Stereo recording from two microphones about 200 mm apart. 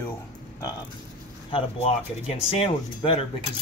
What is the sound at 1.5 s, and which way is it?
Speech, 30° left (ahead or behind).